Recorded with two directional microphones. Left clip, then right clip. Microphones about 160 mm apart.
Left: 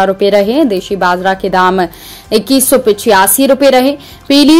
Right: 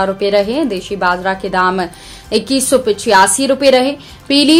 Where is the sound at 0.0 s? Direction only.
40° left (ahead or behind).